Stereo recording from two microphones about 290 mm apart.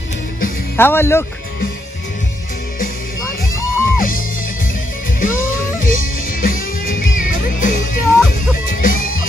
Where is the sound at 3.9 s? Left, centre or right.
Left.